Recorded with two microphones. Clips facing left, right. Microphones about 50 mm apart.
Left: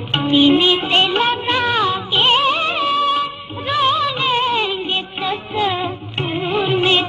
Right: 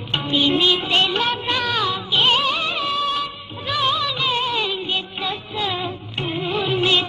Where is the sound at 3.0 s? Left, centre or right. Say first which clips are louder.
Left 6 dB; left.